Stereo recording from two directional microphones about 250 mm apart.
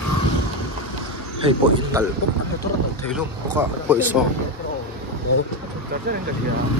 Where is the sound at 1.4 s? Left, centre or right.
Right.